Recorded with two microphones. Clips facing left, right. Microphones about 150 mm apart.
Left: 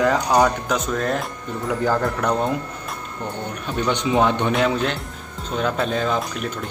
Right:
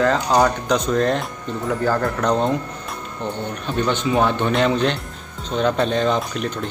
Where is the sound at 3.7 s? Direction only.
15° left (ahead or behind).